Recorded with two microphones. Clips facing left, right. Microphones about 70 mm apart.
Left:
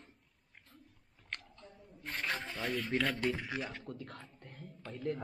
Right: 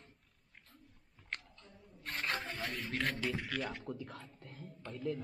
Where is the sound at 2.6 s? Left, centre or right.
Centre.